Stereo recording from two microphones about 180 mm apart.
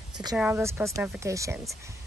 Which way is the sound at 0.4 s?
10° right (ahead or behind).